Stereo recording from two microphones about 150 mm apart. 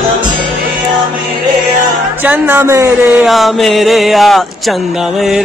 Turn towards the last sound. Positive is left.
turn(degrees=0)  # may be behind; listen again after turning